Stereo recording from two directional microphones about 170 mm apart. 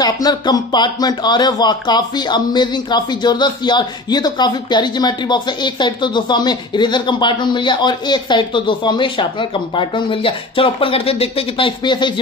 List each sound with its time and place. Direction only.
0.0 s speech: 25° left (ahead or behind)